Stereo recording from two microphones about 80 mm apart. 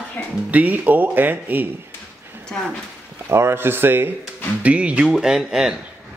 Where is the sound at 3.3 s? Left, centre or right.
Right.